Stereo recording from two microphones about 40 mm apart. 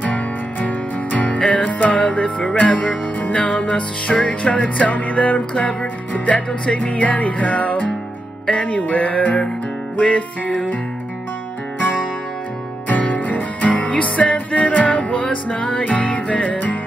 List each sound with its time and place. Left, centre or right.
0.6 s music: left
12.8 s music: left
15.8 s music: left